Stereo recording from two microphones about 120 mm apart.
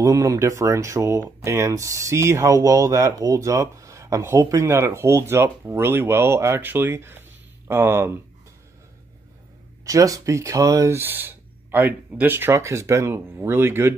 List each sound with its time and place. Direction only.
0.0 s speech: 25° right (ahead or behind)
9.8 s speech: 30° right (ahead or behind)